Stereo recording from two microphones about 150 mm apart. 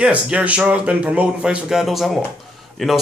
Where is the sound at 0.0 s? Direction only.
5° right (ahead or behind).